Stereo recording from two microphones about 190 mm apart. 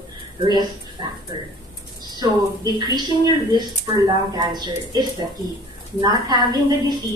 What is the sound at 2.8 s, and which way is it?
A woman's voice, 20° right (ahead or behind).